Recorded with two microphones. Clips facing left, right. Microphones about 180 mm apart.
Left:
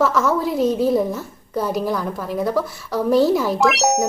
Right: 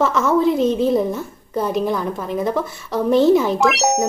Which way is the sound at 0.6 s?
25° right (ahead or behind).